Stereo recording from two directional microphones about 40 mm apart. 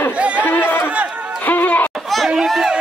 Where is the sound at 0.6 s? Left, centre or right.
Left.